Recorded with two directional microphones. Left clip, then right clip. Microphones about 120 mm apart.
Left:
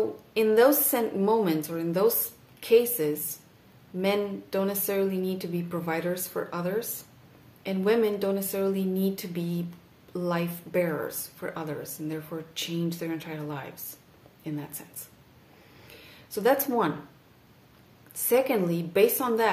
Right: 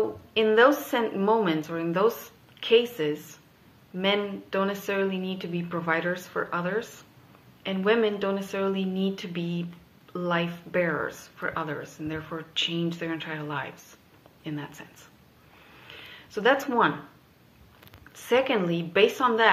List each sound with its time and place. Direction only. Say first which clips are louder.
0.3 s speech: right 1 dB; 35° left (ahead or behind)
16.6 s speech: right 3 dB; 30° left (ahead or behind)
18.7 s speech: right 1 dB; 30° left (ahead or behind)